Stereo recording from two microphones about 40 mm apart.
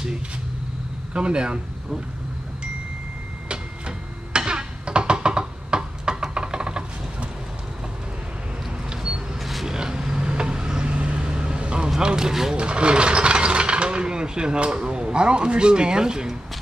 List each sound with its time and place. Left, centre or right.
1.1 s speech: right
3.4 s tick-tock: right
9.4 s a sound: centre
9.7 s vehicle: centre
12.0 s speech: centre
12.5 s speech: right